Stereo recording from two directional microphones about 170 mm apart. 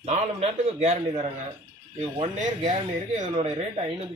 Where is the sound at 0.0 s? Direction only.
40° right (ahead or behind).